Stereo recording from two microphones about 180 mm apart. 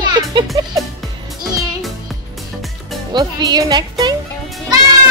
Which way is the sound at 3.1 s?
25° right (ahead or behind).